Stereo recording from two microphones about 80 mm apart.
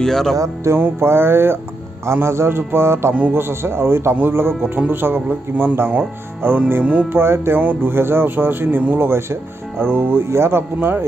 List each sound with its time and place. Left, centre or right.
0.0 s music: centre
0.7 s a man's voice: right